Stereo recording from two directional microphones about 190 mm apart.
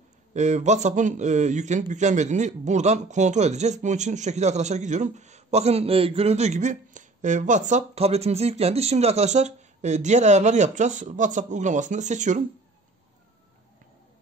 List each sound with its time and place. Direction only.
0.3 s a man's voice: 40° right (ahead or behind)